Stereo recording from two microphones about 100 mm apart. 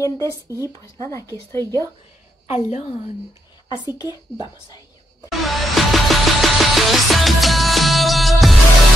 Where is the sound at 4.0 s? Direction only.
40° left (ahead or behind).